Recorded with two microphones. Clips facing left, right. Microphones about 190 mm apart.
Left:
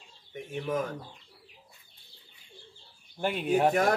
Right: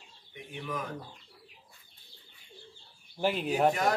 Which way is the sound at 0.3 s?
45° left (ahead or behind).